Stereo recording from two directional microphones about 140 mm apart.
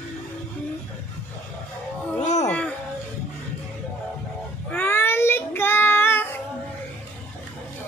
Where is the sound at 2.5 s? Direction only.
10° left (ahead or behind).